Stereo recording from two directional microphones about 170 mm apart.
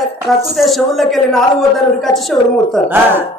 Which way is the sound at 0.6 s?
Centre (ahead or behind).